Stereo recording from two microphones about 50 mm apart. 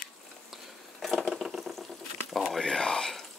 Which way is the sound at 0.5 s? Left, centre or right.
Centre.